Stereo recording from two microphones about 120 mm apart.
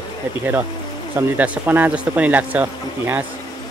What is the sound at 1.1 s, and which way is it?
Speech, 15° right (ahead or behind).